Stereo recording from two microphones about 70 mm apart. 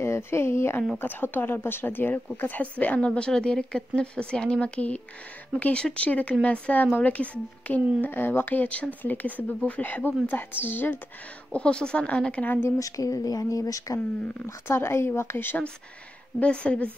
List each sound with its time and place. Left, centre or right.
0.0 s a woman's voice: left
11.5 s speech: centre
12.6 s speech: left
14.4 s speech: left
16.3 s speech: centre